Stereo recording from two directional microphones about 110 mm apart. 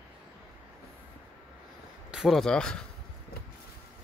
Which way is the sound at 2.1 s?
Centre (ahead or behind).